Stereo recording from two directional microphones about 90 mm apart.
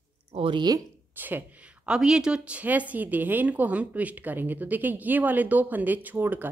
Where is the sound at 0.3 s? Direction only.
80° right.